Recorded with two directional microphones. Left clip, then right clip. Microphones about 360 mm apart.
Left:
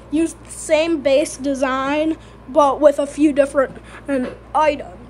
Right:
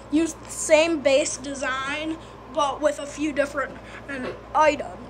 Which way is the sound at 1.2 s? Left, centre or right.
Left.